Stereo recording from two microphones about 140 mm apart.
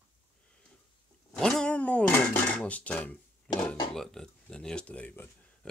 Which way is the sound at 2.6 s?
10° left (ahead or behind).